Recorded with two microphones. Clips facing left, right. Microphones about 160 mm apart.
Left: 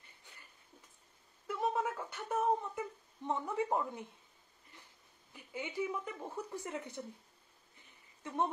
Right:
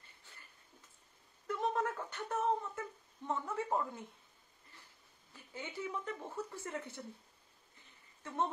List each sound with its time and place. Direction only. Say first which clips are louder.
1.5 s a sound: even; 10° left (ahead or behind)
3.3 s a woman's voice: left 2 dB; 15° left (ahead or behind)
5.3 s a woman's voice: left 4 dB; 15° left (ahead or behind)
8.2 s speech: left 2 dB; 15° left (ahead or behind)